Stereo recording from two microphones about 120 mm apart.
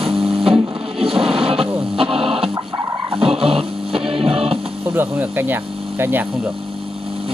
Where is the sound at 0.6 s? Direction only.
50° right (ahead or behind).